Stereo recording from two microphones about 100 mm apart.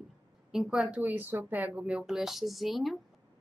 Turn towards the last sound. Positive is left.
turn(degrees=0)  # may be behind; listen again after turning